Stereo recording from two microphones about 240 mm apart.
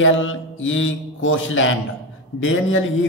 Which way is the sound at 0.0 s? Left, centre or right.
Left.